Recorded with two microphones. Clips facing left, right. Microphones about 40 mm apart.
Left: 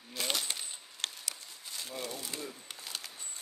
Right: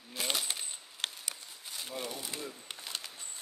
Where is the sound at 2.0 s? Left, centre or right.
Right.